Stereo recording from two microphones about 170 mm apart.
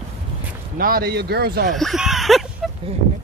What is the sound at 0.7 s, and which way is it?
Speech, 60° right (ahead or behind).